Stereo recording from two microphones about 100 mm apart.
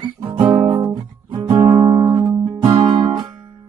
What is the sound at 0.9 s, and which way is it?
Music, 45° right (ahead or behind).